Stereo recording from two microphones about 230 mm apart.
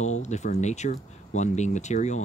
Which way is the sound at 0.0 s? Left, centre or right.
Left.